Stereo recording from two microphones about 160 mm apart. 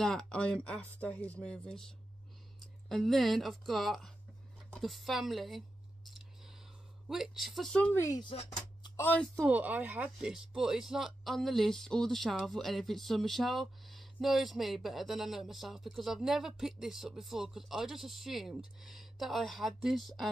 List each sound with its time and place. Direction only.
0.0 s speech: 5° left (ahead or behind)
6.0 s a sound: centre (ahead or behind)
7.1 s speech: centre (ahead or behind); by 8.2 s 15° left (ahead or behind)
8.2 s speech: 30° left (ahead or behind)
8.9 s speech: 10° left (ahead or behind)
9.5 s speech: 10° right (ahead or behind)